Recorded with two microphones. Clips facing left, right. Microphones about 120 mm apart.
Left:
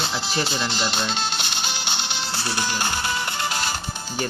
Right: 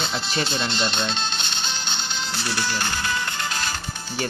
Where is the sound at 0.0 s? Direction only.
Centre (ahead or behind).